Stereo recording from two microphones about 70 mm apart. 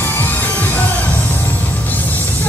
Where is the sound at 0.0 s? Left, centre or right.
Left.